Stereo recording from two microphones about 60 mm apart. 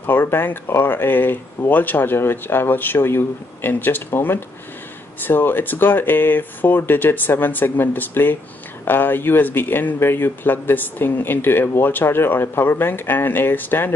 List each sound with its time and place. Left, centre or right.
0.0 s speech: left